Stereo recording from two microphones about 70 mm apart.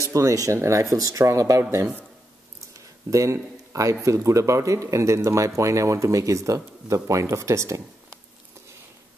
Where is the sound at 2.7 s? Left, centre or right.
Right.